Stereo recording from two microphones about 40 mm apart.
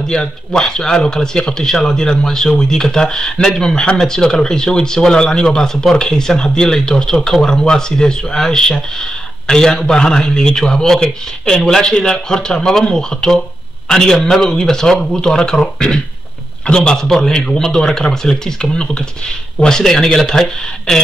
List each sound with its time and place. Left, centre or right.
0.0 s a man's voice: centre
16.6 s speech: left